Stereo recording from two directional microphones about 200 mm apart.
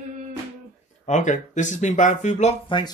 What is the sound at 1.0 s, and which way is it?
Speech, 35° left (ahead or behind).